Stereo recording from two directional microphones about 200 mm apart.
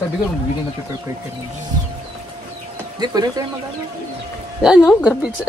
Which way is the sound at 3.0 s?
20° right (ahead or behind).